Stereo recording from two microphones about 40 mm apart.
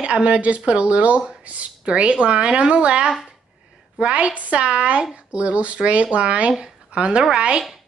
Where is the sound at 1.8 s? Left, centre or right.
Right.